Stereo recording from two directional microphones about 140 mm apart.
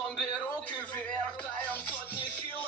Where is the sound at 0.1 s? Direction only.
10° left (ahead or behind).